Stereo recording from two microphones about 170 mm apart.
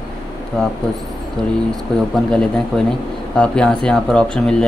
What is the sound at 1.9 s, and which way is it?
Speech, 5° left (ahead or behind).